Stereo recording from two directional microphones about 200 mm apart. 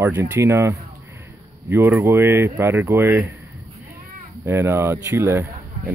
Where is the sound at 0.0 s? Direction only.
10° right (ahead or behind).